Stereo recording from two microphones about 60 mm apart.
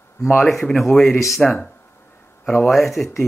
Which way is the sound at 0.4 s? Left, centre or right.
Centre.